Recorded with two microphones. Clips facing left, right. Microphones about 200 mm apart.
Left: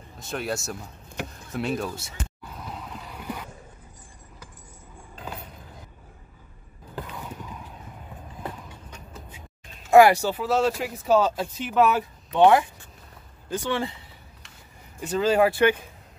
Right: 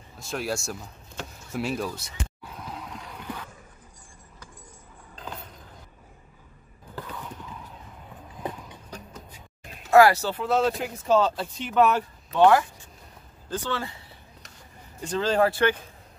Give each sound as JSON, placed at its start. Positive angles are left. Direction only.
{"t": 0.2, "sound": "speech", "side_deg": 0}
{"t": 2.5, "sound": "boat", "side_deg": 0}
{"t": 5.1, "sound": "vehicle", "side_deg": 10}
{"t": 7.0, "sound": "mechanisms", "side_deg": 15}
{"t": 8.4, "sound": "clip-clop", "side_deg": -20}
{"t": 9.8, "sound": "speech", "side_deg": 15}
{"t": 12.3, "sound": "speech", "side_deg": 15}
{"t": 15.0, "sound": "speech", "side_deg": 5}